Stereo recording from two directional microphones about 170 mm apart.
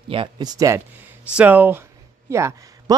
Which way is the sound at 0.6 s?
15° right (ahead or behind).